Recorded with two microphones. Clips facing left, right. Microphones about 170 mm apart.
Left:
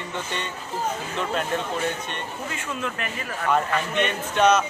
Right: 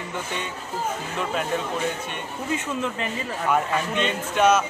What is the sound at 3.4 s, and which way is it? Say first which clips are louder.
Speech: even; 10° right (ahead or behind).